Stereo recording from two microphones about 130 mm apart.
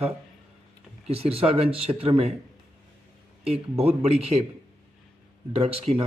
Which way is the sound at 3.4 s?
50° right (ahead or behind).